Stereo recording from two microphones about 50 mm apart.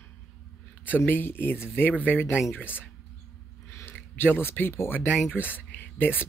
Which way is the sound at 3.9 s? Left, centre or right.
Left.